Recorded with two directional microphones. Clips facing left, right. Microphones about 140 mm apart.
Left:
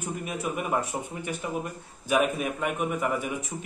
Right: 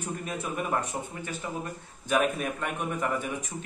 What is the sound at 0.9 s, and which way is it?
Speech, 25° left (ahead or behind).